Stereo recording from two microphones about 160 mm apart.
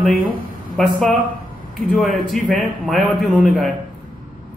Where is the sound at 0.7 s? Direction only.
Centre (ahead or behind).